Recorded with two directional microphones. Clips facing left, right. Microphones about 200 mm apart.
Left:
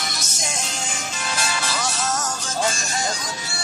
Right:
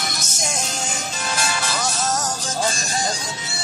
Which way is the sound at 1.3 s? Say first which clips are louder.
Right 1 dB; 45° right (ahead or behind).